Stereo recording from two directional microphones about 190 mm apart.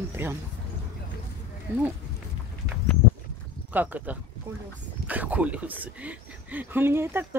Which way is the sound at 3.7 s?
10° right (ahead or behind).